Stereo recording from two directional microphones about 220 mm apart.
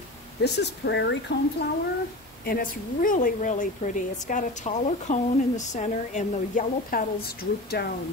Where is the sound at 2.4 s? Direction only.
40° left (ahead or behind).